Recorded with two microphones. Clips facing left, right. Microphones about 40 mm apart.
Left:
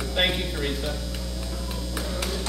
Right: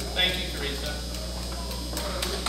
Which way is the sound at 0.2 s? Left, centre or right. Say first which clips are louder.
Left 2 dB; centre.